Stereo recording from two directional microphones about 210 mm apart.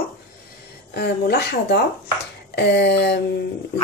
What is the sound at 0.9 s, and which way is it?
A woman's voice, 50° left (ahead or behind).